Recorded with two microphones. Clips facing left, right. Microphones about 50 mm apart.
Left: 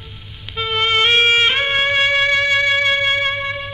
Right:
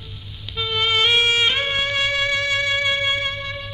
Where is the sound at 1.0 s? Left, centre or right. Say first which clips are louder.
Left 4 dB; centre.